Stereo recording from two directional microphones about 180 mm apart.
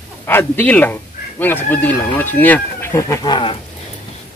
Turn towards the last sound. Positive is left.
turn(degrees=25)  # may be behind; listen again after turning